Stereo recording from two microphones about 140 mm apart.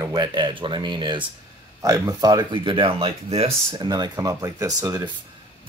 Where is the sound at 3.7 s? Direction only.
30° right (ahead or behind).